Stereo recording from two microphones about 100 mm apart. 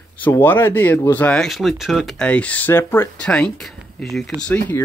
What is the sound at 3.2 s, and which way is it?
Speech, 10° left (ahead or behind).